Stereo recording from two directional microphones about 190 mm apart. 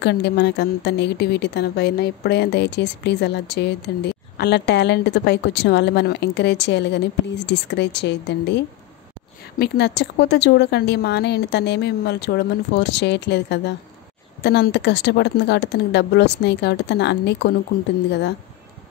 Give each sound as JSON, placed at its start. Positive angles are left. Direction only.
{"t": 0.0, "sound": "speech", "side_deg": 60}